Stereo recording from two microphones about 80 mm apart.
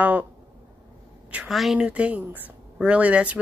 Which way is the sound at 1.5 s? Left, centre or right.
Centre.